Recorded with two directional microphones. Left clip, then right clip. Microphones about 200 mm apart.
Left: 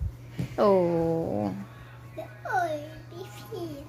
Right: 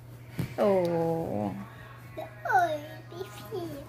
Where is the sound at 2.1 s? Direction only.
5° right (ahead or behind).